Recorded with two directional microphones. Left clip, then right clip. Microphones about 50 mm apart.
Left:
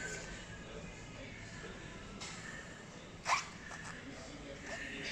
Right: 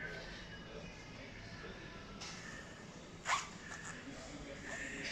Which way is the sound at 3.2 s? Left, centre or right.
Left.